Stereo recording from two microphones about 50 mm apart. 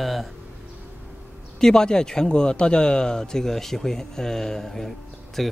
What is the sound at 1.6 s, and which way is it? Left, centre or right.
Speech, centre.